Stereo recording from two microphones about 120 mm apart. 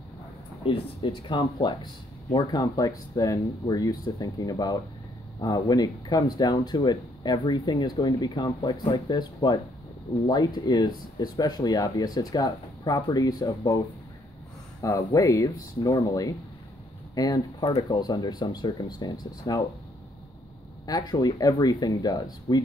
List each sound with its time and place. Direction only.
0.7 s speech: 45° left (ahead or behind)
14.8 s speech: 30° left (ahead or behind)
20.8 s speech: 35° left (ahead or behind)